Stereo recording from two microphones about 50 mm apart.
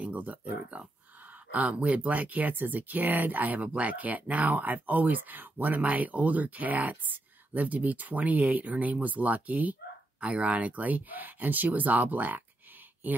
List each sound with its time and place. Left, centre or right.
0.0 s speech: right